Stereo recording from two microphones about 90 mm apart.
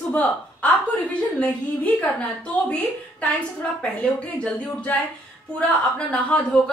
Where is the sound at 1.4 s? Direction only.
15° left (ahead or behind).